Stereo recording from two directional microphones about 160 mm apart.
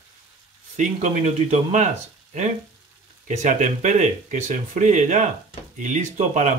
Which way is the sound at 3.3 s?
50° right (ahead or behind).